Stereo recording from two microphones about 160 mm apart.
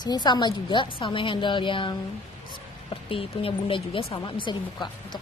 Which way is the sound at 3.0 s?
35° left (ahead or behind).